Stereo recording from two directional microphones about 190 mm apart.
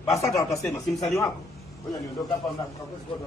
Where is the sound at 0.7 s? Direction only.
15° left (ahead or behind).